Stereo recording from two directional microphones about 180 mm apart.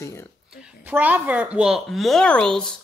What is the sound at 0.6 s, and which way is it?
A woman's voice, 10° right (ahead or behind).